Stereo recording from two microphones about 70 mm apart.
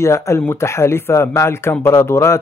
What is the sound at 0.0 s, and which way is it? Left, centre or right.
Speech, left.